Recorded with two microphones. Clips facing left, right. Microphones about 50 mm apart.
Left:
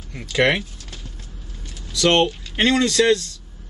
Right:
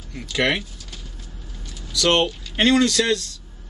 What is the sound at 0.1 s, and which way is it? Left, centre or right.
Speech, centre.